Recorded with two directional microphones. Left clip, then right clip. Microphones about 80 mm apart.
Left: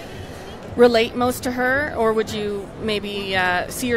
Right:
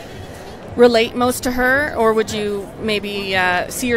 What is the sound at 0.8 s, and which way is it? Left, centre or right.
Speech, centre.